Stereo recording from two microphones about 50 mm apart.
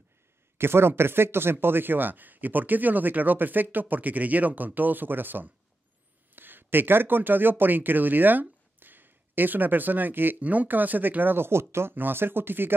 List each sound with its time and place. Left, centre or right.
0.6 s speech: right
10.4 s speech: right